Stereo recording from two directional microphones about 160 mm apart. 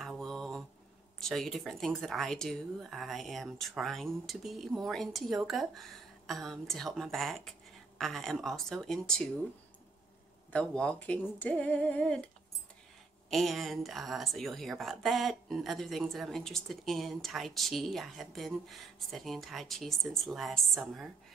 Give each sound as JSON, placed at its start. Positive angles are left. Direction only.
{"t": 0.0, "sound": "mantra", "side_deg": 0}
{"t": 1.2, "sound": "speech", "side_deg": 0}
{"t": 10.5, "sound": "speech", "side_deg": 5}
{"t": 13.3, "sound": "speech", "side_deg": 0}